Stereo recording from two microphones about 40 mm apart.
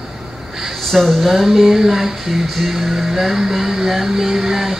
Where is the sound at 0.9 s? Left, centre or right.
Centre.